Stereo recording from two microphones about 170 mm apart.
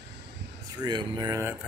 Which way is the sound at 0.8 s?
25° right (ahead or behind).